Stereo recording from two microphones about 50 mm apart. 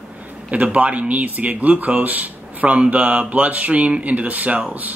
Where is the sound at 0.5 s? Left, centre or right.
Right.